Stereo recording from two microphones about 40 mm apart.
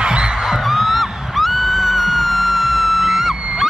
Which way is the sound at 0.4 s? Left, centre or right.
Centre.